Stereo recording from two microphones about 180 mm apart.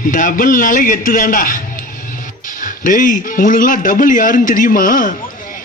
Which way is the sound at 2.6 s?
45° left (ahead or behind).